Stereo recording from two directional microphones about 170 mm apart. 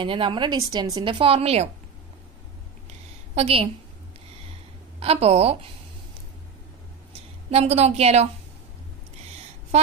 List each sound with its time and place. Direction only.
0.0 s a woman's voice: 30° right (ahead or behind)
3.3 s a woman's voice: 35° right (ahead or behind)
5.0 s a woman's voice: 35° right (ahead or behind)
7.5 s a woman's voice: 40° right (ahead or behind)